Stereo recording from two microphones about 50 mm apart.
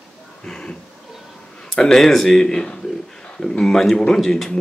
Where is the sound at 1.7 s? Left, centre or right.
Centre.